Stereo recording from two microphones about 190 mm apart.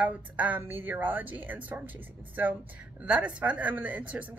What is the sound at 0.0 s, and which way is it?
A woman's voice, 10° right (ahead or behind).